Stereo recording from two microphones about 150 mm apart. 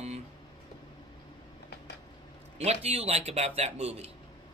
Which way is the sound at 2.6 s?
45° right (ahead or behind).